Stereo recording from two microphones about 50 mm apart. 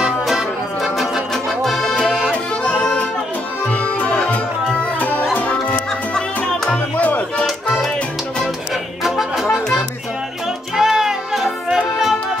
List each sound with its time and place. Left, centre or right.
0.8 s music: centre
2.3 s accordion: left
4.9 s music: left
7.4 s music: centre
10.8 s music: centre